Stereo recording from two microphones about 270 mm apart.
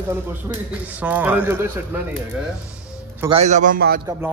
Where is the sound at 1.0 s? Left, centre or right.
Centre.